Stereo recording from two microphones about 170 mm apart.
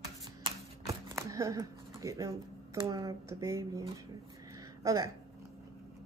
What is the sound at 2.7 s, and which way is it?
Speech, 20° right (ahead or behind).